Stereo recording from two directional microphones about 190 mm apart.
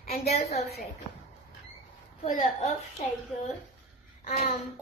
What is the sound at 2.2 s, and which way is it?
Speech, 45° left (ahead or behind).